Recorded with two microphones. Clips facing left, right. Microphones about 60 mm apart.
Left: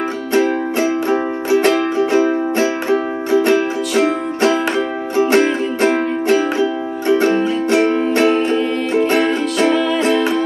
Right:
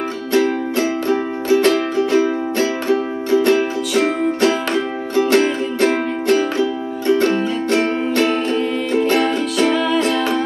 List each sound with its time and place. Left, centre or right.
0.3 s music: left
9.2 s music: centre